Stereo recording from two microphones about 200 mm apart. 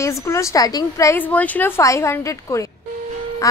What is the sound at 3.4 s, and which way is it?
Quack, 15° left (ahead or behind).